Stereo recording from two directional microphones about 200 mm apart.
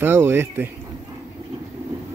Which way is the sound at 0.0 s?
10° right (ahead or behind).